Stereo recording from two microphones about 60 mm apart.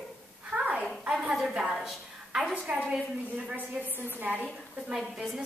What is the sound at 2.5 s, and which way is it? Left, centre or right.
A woman's voice, right.